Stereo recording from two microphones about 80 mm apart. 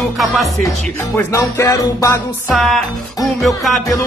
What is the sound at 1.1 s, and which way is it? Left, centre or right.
Music, left.